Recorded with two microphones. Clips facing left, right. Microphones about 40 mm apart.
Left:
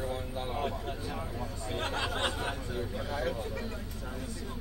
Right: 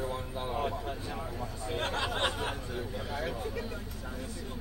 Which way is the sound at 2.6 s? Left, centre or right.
Centre.